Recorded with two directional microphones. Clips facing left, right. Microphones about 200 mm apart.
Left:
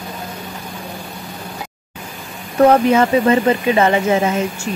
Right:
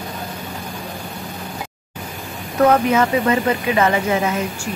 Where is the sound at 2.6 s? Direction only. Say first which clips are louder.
Left 3 dB; 30° left (ahead or behind).